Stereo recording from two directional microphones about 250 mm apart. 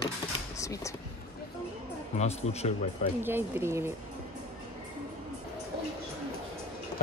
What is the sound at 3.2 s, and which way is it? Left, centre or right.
Speech, centre.